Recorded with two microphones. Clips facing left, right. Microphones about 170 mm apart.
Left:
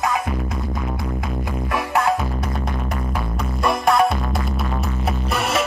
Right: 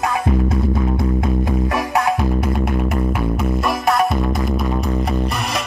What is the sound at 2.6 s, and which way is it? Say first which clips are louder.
Music: right 7 dB; 5° right (ahead or behind).